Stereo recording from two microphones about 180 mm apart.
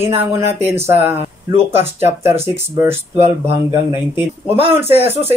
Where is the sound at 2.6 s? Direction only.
15° right (ahead or behind).